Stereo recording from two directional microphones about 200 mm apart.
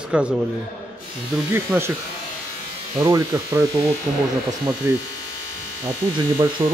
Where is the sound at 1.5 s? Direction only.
10° right (ahead or behind).